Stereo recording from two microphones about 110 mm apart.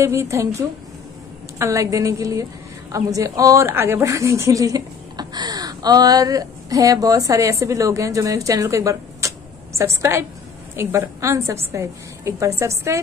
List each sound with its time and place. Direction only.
0.0 s a woman's voice: 25° right (ahead or behind)